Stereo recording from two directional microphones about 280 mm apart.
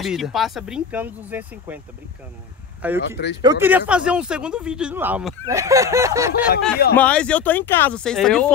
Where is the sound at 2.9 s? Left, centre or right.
Left.